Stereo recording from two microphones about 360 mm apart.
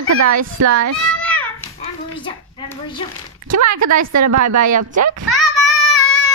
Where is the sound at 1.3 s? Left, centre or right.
Centre.